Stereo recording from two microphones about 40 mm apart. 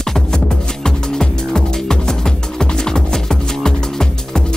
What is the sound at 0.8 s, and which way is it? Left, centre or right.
Music, centre.